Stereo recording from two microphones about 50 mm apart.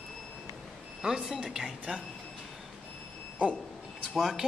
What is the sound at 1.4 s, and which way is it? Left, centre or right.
Speech, centre.